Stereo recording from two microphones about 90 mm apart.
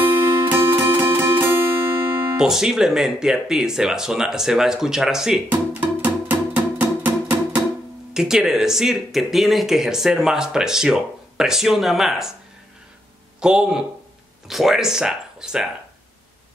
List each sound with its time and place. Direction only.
0.0 s music: 20° right (ahead or behind)
2.3 s speech: 5° right (ahead or behind)
5.5 s music: 20° right (ahead or behind)
8.1 s speech: 5° right (ahead or behind)
13.4 s speech: 10° right (ahead or behind)